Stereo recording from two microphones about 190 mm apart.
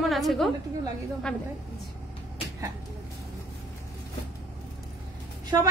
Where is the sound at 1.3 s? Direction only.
5° left (ahead or behind).